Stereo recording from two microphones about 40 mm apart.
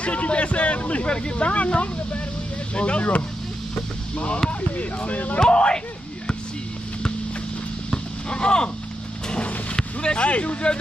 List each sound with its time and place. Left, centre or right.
0.0 s speech: left
3.7 s vehicle: left
4.5 s speech: left
5.4 s speech: left
7.9 s horse: left
9.8 s vehicle: centre
10.2 s speech: left